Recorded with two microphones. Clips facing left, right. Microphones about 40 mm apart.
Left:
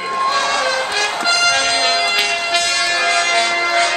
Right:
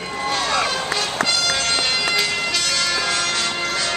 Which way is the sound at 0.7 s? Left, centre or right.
Left.